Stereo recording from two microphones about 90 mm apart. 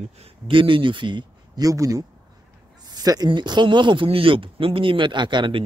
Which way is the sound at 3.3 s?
55° right (ahead or behind).